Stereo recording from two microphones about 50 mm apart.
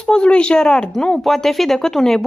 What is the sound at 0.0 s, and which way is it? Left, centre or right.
Speech, centre.